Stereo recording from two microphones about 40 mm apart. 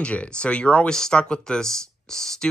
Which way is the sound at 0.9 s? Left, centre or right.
Centre.